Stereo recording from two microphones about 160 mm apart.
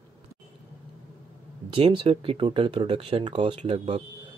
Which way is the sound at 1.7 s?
30° right (ahead or behind).